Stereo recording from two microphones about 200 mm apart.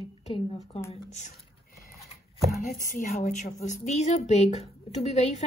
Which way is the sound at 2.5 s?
40° left (ahead or behind).